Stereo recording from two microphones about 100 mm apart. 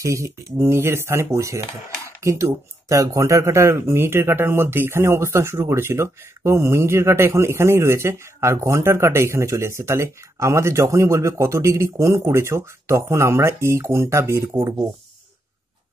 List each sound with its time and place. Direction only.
0.0 s speech: 30° right (ahead or behind)